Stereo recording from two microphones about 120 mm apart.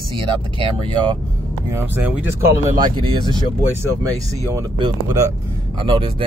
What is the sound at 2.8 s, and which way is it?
Speech, 40° right (ahead or behind).